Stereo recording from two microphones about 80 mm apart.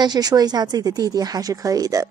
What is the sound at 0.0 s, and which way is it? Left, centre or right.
A woman's voice, right.